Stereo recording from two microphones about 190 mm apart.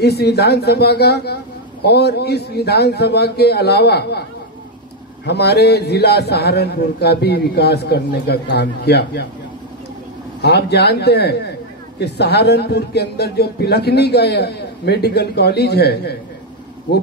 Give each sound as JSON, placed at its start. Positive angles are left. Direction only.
{"t": 0.0, "sound": "a man's voice", "side_deg": 60}
{"t": 5.2, "sound": "a man's voice", "side_deg": 60}
{"t": 10.4, "sound": "a man's voice", "side_deg": 60}